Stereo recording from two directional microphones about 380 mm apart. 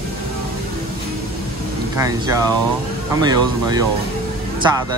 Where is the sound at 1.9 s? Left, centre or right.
Centre.